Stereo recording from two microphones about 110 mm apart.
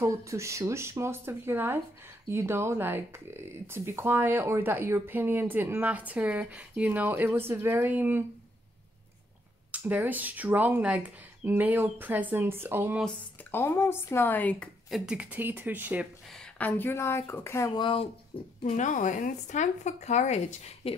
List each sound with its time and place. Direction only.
0.0 s speech: 30° right (ahead or behind)
9.7 s speech: 15° right (ahead or behind)
13.5 s speech: 20° left (ahead or behind)
14.9 s speech: 10° right (ahead or behind)
16.3 s speech: 15° left (ahead or behind)
17.7 s speech: 50° left (ahead or behind)
19.5 s a woman's voice: 90° left